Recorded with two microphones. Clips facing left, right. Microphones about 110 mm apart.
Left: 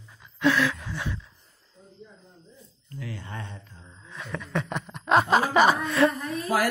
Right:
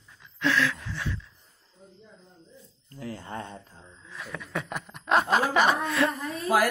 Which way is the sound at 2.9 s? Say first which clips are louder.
Right 2 dB; 40° right (ahead or behind).